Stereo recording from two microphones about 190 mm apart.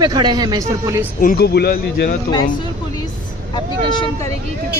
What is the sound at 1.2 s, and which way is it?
Speech, 50° left (ahead or behind).